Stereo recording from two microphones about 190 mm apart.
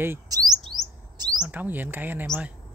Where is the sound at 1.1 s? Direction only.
20° right (ahead or behind).